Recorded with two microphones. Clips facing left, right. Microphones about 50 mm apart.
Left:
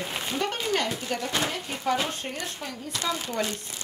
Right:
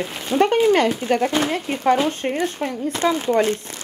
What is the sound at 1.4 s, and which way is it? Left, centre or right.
Speech, right.